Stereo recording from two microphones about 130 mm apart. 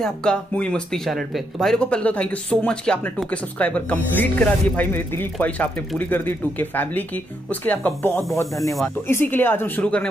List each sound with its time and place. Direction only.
0.0 s speech: 5° left (ahead or behind)